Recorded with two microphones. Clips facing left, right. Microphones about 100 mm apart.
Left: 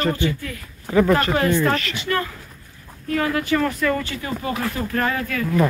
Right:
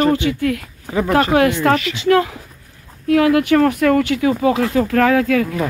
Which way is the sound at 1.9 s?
90° right.